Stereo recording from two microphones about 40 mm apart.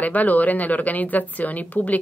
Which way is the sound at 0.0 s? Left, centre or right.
Left.